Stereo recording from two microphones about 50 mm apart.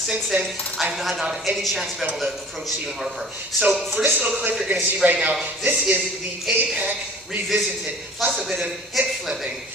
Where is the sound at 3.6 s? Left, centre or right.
Centre.